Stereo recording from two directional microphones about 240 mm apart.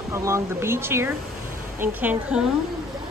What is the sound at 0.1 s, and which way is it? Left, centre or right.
A woman's voice, centre.